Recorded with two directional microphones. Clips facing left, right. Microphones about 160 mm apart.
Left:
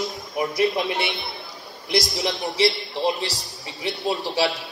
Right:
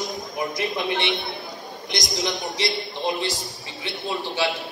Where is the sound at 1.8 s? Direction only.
30° left (ahead or behind).